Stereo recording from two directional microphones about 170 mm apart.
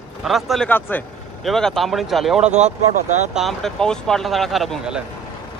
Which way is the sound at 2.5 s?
40° right (ahead or behind).